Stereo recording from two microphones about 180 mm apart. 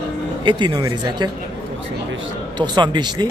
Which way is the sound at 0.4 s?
25° right (ahead or behind).